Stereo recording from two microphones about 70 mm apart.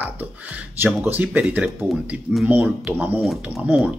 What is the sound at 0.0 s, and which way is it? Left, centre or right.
Speech, right.